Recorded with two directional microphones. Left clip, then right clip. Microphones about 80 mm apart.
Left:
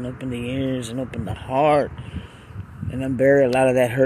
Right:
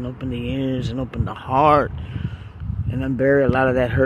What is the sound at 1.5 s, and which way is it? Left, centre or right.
Speech, right.